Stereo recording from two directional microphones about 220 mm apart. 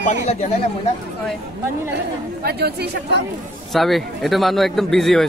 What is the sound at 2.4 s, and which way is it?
Speech, 45° right (ahead or behind).